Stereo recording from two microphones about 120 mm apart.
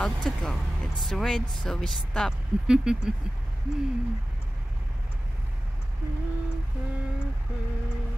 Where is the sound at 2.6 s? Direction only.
5° right (ahead or behind).